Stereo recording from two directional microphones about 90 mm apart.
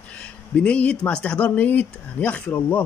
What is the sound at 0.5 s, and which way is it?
Speech, 15° left (ahead or behind).